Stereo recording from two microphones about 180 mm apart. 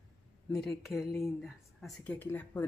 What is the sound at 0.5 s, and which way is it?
A woman's voice, centre (ahead or behind).